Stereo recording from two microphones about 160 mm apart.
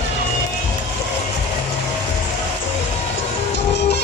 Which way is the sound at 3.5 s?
90° left.